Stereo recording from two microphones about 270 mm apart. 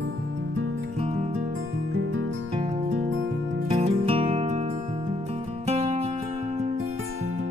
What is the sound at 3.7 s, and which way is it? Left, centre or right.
Music, right.